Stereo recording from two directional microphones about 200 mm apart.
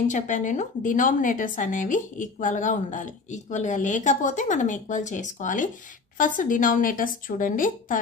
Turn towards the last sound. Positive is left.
turn(degrees=40)  # may be behind; listen again after turning